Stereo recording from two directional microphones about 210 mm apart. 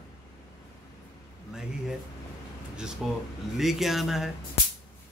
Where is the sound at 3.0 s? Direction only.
Centre (ahead or behind).